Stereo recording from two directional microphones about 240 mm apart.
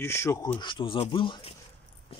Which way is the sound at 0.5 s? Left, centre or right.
Left.